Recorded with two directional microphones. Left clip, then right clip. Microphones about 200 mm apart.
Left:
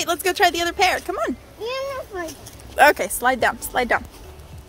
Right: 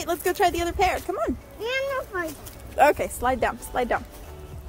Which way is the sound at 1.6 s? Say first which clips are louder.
Even; 60° right (ahead or behind).